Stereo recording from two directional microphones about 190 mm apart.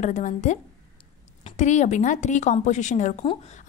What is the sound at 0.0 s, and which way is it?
Speech, 40° left (ahead or behind).